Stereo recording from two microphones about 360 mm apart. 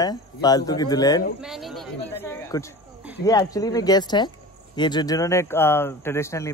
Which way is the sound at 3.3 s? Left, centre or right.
Centre.